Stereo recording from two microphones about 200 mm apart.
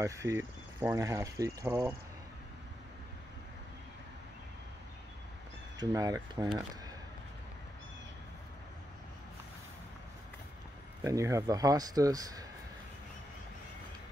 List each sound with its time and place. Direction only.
0.0 s speech: 15° right (ahead or behind)
5.8 s speech: 20° right (ahead or behind)
11.1 s speech: 15° right (ahead or behind)